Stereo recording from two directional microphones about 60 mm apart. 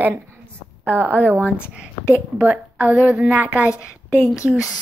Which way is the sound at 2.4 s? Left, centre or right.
Right.